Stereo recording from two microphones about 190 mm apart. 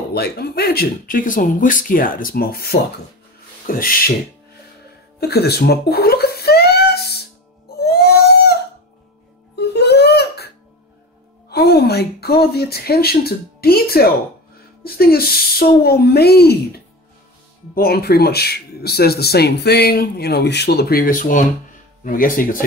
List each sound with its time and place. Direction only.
0.1 s speech: 55° left (ahead or behind)
5.2 s a sound: 55° left (ahead or behind)
9.6 s music: 60° left (ahead or behind)
11.5 s speech: 60° left (ahead or behind)